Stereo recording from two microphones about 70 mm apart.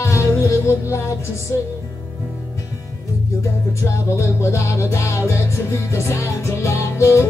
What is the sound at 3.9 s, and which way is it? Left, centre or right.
Music, left.